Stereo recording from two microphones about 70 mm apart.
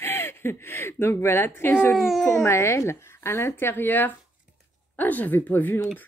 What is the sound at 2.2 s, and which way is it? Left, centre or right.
Speech, left.